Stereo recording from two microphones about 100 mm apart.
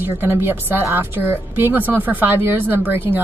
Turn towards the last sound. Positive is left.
turn(degrees=-20)  # may be behind; listen again after turning